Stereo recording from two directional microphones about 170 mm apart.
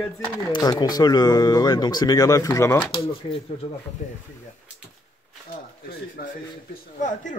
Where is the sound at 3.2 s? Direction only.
35° left (ahead or behind).